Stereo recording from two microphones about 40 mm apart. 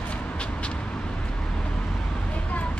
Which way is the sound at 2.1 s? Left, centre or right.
Left.